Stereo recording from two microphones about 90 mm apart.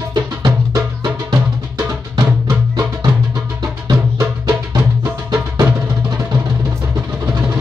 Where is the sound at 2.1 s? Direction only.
50° right (ahead or behind).